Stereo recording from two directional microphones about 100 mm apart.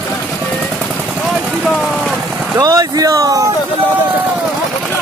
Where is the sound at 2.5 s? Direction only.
35° right (ahead or behind).